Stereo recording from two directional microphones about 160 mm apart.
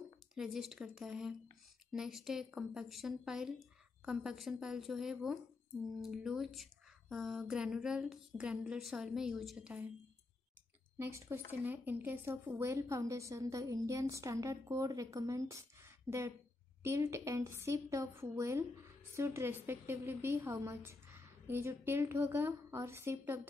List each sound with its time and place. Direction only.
0.3 s speech: centre (ahead or behind)
11.0 s a woman's voice: 15° right (ahead or behind)